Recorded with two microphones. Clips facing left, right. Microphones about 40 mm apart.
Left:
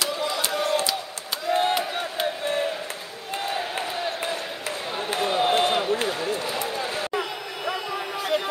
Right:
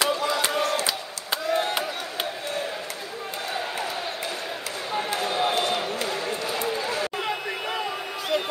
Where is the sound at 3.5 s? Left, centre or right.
Left.